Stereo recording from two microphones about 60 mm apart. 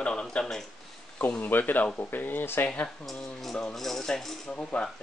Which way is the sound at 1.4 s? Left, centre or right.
Left.